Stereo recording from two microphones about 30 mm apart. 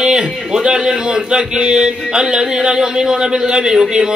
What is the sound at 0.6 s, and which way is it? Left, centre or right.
A man's voice, right.